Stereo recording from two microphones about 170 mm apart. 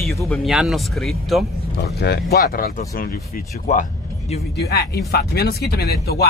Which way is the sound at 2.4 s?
55° left (ahead or behind).